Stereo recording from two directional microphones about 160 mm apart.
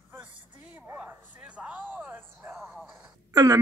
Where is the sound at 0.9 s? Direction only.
10° right (ahead or behind).